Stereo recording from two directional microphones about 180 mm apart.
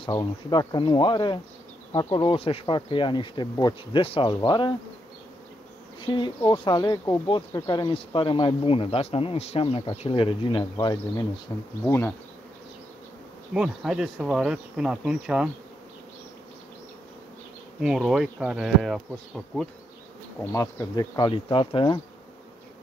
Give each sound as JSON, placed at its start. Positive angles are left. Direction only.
{"t": 0.0, "sound": "speech", "side_deg": 20}
{"t": 6.0, "sound": "speech", "side_deg": 25}
{"t": 11.8, "sound": "bee", "side_deg": 10}
{"t": 13.5, "sound": "speech", "side_deg": -5}
{"t": 17.7, "sound": "speech", "side_deg": 0}
{"t": 20.3, "sound": "speech", "side_deg": 15}